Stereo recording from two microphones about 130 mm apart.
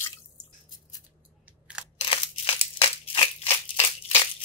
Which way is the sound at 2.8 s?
45° left (ahead or behind).